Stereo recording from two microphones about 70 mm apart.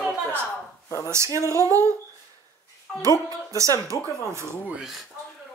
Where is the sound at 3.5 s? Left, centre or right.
Right.